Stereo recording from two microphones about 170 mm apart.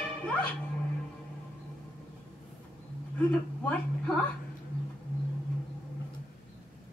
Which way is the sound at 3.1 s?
10° left (ahead or behind).